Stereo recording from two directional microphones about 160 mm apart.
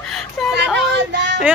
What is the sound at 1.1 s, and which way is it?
Child singing, 90° right.